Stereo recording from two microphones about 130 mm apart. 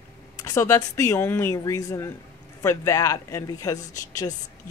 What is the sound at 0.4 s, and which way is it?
Speech, 20° left (ahead or behind).